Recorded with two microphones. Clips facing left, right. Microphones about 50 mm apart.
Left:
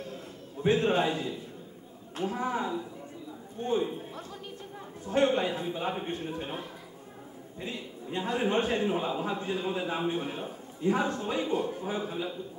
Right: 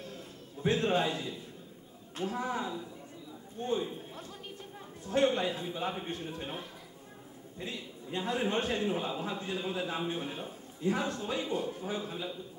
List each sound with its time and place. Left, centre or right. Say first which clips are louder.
0.7 s a man's voice: left 3 dB; left
2.3 s a man's voice: left 4 dB; left
5.0 s a man's voice: left 2 dB; left
11.4 s a man's voice: left 4 dB; centre